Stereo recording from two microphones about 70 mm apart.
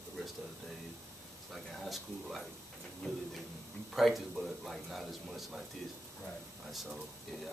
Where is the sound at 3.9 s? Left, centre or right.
Centre.